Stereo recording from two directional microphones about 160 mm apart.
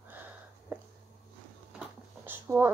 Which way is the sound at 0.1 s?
10° right (ahead or behind).